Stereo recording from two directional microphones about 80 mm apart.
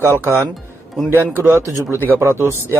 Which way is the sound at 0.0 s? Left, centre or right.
Right.